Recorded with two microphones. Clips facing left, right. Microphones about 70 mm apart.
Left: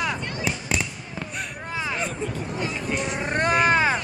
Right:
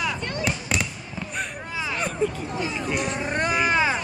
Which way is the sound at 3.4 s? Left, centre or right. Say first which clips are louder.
Left 3 dB; left.